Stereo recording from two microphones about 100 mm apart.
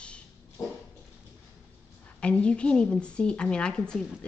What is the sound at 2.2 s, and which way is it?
A woman's voice, 10° left (ahead or behind).